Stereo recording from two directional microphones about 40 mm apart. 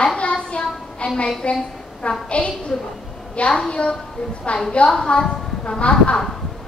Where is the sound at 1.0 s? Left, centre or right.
Left.